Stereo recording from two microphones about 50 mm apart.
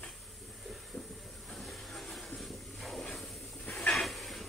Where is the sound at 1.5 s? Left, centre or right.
Centre.